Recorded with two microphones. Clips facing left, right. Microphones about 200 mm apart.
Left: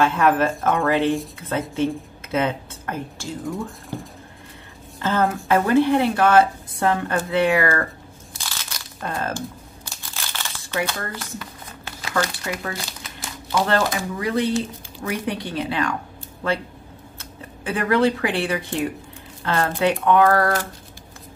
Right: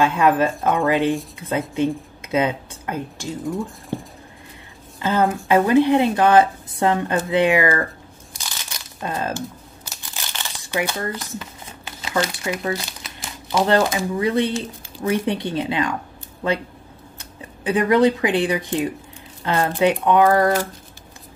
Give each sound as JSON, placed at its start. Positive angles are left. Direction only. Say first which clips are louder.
{"t": 0.0, "sound": "a woman's voice", "louder": "right 1 dB", "side_deg": -15}
{"t": 3.4, "sound": "speech", "louder": "right 4 dB", "side_deg": 0}
{"t": 5.0, "sound": "speech", "louder": "right 2 dB", "side_deg": -15}
{"t": 8.3, "sound": "crunch", "louder": "even", "side_deg": -15}
{"t": 10.1, "sound": "crumpling", "louder": "even", "side_deg": -15}
{"t": 15.0, "sound": "speech", "louder": "right 5 dB", "side_deg": -25}
{"t": 17.2, "sound": "speech", "louder": "right 3 dB", "side_deg": -15}